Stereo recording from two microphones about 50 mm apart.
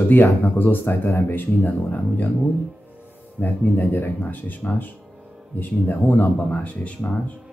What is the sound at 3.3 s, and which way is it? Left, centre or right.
Speech, left.